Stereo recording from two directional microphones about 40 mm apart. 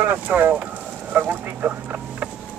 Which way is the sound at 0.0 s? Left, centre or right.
Right.